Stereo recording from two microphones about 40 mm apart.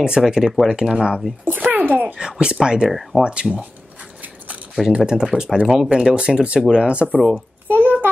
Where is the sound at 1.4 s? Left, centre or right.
Right.